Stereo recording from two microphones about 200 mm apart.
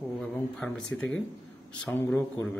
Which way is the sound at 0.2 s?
5° left (ahead or behind).